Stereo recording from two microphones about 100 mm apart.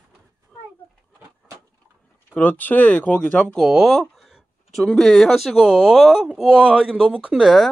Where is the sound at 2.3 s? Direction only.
15° left (ahead or behind).